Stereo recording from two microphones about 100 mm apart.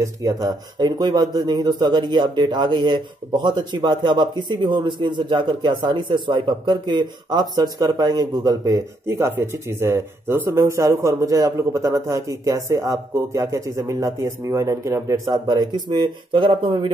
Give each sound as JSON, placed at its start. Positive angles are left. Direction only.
{"t": 0.0, "sound": "speech", "side_deg": -35}
{"t": 9.0, "sound": "speech", "side_deg": -30}